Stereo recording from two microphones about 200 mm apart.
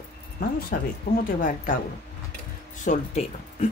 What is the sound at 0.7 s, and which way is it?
Speech, 50° left (ahead or behind).